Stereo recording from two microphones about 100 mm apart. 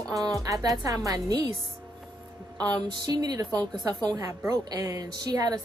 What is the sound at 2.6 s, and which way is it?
A woman's voice, 40° right (ahead or behind).